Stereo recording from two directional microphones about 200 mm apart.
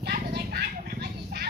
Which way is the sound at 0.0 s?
55° right (ahead or behind).